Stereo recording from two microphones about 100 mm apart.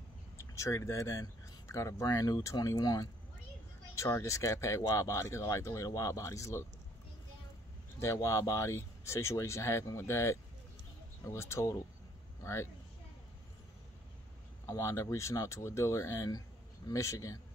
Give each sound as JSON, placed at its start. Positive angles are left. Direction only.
{"t": 0.4, "sound": "speech", "side_deg": 30}
{"t": 8.0, "sound": "speech", "side_deg": 30}
{"t": 14.7, "sound": "speech", "side_deg": 30}